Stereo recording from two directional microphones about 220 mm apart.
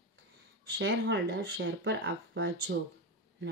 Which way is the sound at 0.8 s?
55° right (ahead or behind).